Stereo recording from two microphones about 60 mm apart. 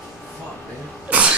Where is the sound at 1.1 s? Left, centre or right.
Centre.